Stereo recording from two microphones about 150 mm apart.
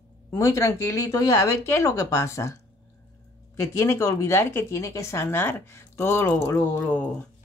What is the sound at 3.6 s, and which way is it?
Speech, 20° left (ahead or behind).